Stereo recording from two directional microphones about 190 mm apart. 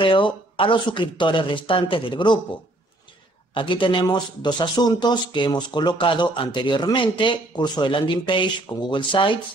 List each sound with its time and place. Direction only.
0.0 s speech: 25° left (ahead or behind)
3.5 s speech: 25° left (ahead or behind)